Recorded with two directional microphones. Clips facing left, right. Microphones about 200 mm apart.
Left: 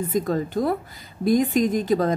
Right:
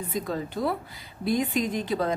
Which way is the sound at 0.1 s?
45° left (ahead or behind).